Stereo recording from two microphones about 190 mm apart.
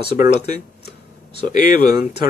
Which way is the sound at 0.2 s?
50° left (ahead or behind).